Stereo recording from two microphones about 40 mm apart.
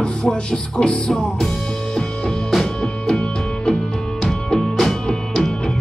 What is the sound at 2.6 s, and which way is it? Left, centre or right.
Music, centre.